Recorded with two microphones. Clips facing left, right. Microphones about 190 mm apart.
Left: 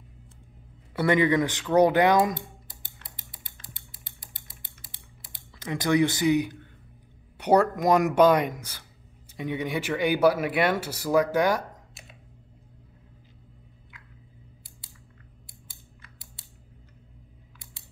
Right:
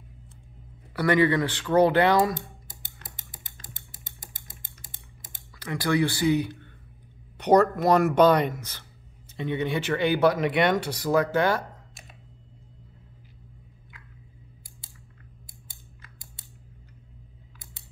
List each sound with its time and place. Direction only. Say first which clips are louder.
0.9 s speech: even; 20° left (ahead or behind)
2.3 s typing: right 1 dB; 45° right (ahead or behind)
5.6 s speech: left 2 dB; 20° left (ahead or behind)
11.9 s computer keyboard: even; 50° right (ahead or behind)
15.7 s scissors: right 1 dB; 50° right (ahead or behind)